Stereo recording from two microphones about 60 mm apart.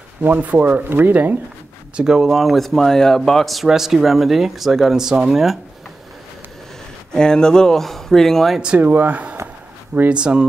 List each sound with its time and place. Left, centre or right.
0.2 s speech: right
2.0 s speech: centre
7.1 s speech: centre
8.7 s speech: right